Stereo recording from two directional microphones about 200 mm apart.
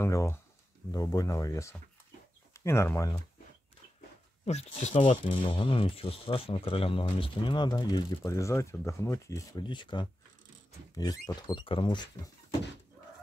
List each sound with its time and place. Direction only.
0.0 s speech: 15° left (ahead or behind)
4.5 s speech: 35° left (ahead or behind)